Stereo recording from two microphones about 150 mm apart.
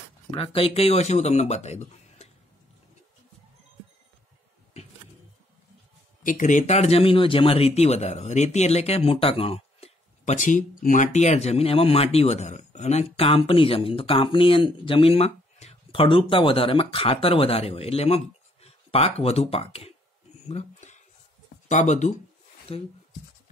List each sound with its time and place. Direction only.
0.3 s speech: 40° left (ahead or behind)
6.2 s speech: 60° left (ahead or behind); by 19.9 s 40° left (ahead or behind)
20.4 s a sound: 50° left (ahead or behind)
21.6 s speech: 55° left (ahead or behind)
22.7 s speech: 40° left (ahead or behind)